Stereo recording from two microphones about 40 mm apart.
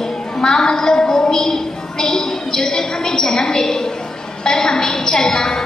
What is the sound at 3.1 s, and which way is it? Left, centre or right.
A woman's voice, centre.